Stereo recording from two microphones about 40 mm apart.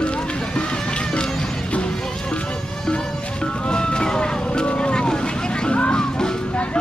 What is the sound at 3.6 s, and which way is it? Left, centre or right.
Vehicle, left.